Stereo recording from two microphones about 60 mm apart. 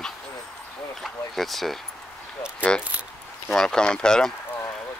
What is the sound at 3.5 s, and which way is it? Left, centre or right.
Speech, centre.